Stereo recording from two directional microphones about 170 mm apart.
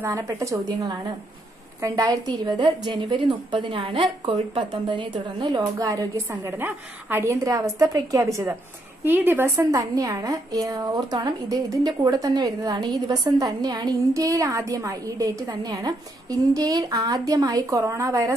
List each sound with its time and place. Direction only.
0.0 s a woman's voice: 15° right (ahead or behind)